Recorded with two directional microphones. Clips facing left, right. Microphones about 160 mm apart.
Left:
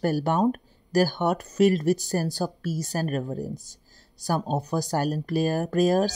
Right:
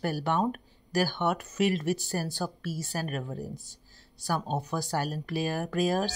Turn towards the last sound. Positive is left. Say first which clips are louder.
# left 6 dB
turn(degrees=40)  # may be behind; listen again after turning